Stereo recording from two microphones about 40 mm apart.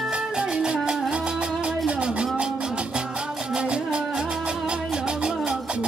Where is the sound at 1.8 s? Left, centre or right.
Right.